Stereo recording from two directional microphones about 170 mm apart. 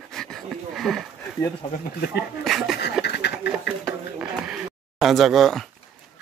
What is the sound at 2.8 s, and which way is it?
Pant, 80° left.